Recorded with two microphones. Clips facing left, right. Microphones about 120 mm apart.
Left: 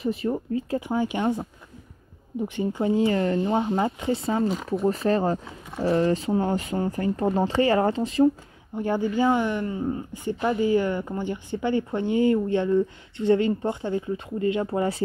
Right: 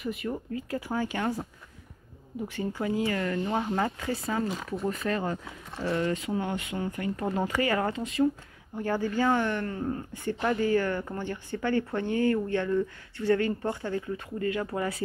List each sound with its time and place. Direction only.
0.0 s speech: 30° left (ahead or behind)
8.7 s speech: 20° left (ahead or behind)